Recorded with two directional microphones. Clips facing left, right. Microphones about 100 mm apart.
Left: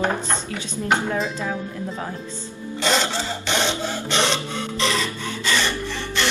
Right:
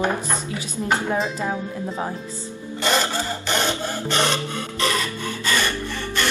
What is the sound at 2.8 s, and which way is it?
Printer, 5° right (ahead or behind).